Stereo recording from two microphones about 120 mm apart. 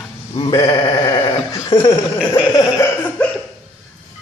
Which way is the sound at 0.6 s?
45° left (ahead or behind).